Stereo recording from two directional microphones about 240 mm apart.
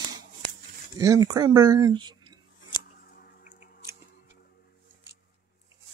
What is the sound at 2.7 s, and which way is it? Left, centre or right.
Scissors, centre.